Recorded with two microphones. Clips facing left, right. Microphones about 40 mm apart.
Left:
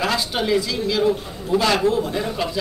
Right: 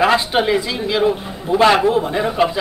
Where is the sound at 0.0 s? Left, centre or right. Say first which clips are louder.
Right 7 dB; right.